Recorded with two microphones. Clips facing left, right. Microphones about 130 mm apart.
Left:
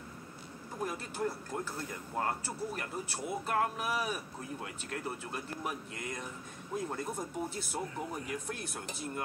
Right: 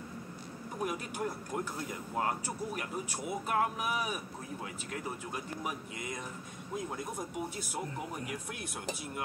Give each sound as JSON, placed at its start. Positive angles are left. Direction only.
{"t": 0.7, "sound": "speech", "side_deg": -15}